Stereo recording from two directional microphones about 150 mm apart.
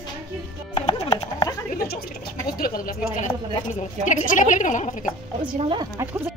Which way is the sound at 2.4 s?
75° left (ahead or behind).